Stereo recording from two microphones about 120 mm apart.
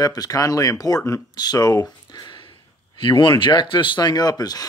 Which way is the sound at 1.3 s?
35° left (ahead or behind).